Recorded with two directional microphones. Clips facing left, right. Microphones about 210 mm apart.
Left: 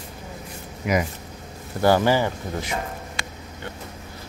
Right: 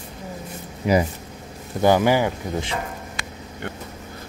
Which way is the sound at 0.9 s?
30° right (ahead or behind).